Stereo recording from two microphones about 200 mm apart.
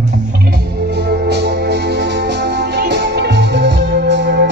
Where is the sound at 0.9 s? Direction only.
55° right (ahead or behind).